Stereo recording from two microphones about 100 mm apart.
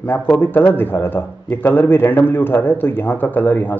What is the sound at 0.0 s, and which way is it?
A man's voice, 20° left (ahead or behind).